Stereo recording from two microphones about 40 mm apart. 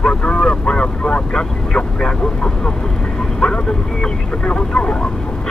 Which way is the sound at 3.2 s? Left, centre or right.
Centre.